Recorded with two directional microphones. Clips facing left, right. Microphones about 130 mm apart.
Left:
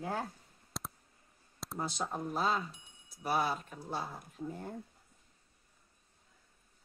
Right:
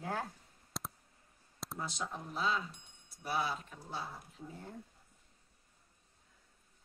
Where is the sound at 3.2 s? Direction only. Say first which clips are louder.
Left 4 dB; 50° left (ahead or behind).